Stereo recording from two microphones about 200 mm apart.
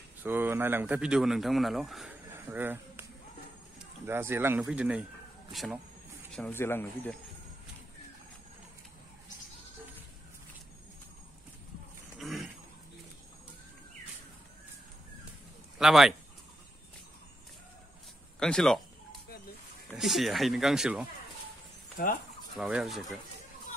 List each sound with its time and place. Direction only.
0.2 s speech: 10° right (ahead or behind)
6.3 s speech: 10° left (ahead or behind)
12.2 s a sound: centre (ahead or behind)
15.8 s speech: centre (ahead or behind)
18.4 s speech: 5° left (ahead or behind)
19.9 s speech: centre (ahead or behind)
21.9 s speech: 45° left (ahead or behind)
22.6 s speech: centre (ahead or behind)